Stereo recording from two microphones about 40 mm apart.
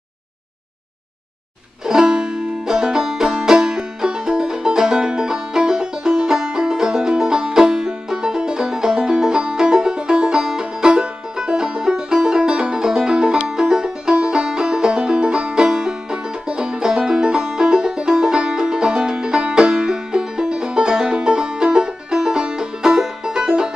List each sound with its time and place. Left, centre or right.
1.9 s music: centre